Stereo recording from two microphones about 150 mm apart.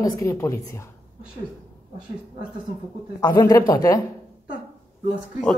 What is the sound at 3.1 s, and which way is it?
Speech, 20° left (ahead or behind).